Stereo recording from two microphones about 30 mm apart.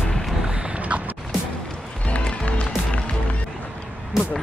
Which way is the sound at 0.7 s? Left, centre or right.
Right.